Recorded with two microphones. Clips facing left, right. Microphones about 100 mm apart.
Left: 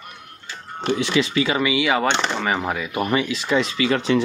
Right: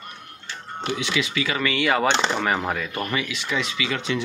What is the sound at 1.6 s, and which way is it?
Speech, 5° left (ahead or behind).